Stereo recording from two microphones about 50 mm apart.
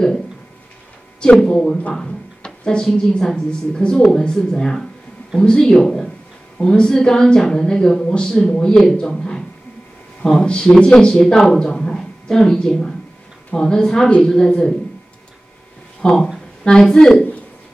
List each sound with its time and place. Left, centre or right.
1.3 s a woman's voice: centre
2.0 s a sound: centre
2.9 s a woman's voice: centre
10.4 s a woman's voice: centre
16.0 s a woman's voice: centre